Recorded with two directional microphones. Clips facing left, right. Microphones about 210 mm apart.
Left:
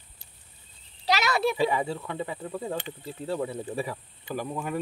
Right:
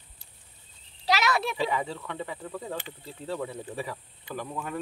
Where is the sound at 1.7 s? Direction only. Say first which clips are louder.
Left 2 dB; 10° left (ahead or behind).